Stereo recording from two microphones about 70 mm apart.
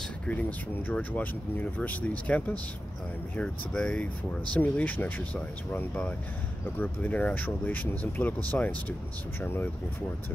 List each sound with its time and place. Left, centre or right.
0.3 s speech: left